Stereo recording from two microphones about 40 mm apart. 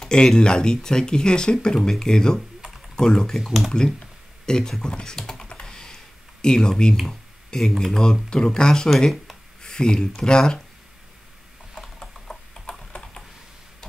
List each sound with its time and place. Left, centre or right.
0.1 s speech: left
3.3 s speech: centre
4.5 s speech: centre
4.8 s computer keyboard: centre
6.4 s speech: centre
7.1 s a sound: centre
7.7 s speech: centre
8.0 s speech: centre
12.0 s tick-tock: centre